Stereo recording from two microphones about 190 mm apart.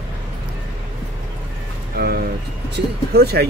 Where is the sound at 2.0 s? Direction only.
55° right (ahead or behind).